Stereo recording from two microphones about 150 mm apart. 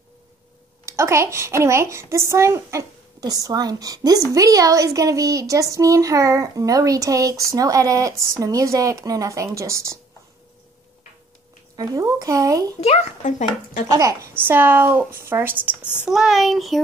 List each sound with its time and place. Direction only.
0.8 s speech: 20° right (ahead or behind)
11.7 s speech: 25° right (ahead or behind)
12.8 s speech: 45° left (ahead or behind)
13.8 s speech: 20° right (ahead or behind); by 16.8 s centre (ahead or behind)